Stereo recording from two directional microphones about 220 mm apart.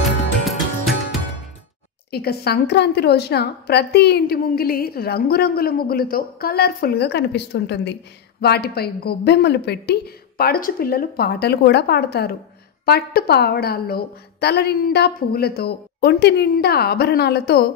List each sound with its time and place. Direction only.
2.0 s a woman's voice: 45° left (ahead or behind)